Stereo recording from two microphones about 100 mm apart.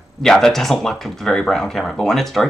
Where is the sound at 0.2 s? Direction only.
5° left (ahead or behind).